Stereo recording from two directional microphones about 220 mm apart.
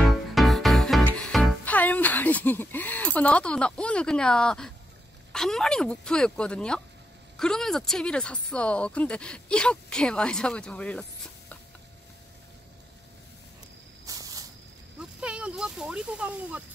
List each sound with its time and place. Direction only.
0.0 s music: centre (ahead or behind)
5.3 s speech: centre (ahead or behind)
14.0 s spray: 15° right (ahead or behind)
15.0 s a sound: 5° right (ahead or behind)